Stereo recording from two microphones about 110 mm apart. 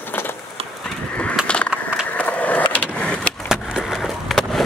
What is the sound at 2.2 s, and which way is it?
Skateboard, 15° left (ahead or behind).